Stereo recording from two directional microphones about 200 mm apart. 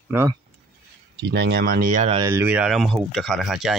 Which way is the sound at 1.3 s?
55° right (ahead or behind).